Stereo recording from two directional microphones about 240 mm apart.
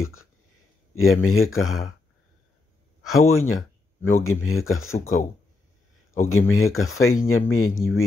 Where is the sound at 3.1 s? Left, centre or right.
Left.